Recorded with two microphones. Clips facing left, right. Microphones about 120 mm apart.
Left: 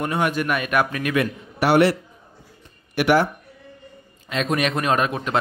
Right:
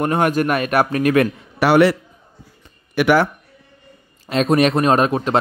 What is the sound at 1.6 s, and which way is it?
Speech, 90° right.